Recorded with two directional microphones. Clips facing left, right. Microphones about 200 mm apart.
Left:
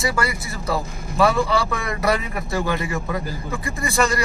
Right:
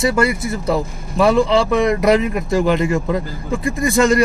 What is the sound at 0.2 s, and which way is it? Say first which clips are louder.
A man's voice: right 8 dB; 25° right (ahead or behind).